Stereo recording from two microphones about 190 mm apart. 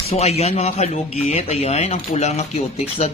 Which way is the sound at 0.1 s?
35° left (ahead or behind).